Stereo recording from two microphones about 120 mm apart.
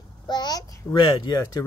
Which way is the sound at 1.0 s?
40° left (ahead or behind).